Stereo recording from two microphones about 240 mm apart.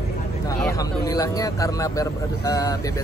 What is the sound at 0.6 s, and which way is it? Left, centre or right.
Speech, centre.